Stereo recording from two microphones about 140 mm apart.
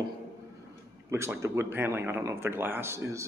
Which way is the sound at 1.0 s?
20° right (ahead or behind).